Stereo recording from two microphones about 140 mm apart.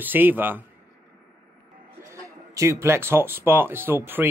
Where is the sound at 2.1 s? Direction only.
20° right (ahead or behind).